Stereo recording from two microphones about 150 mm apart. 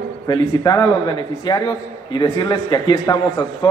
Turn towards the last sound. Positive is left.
turn(degrees=25)  # may be behind; listen again after turning